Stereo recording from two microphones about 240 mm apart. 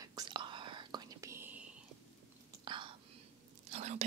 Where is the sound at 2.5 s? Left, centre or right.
Centre.